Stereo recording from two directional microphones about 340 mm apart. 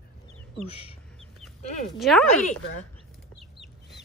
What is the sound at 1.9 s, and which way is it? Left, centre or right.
Speech, centre.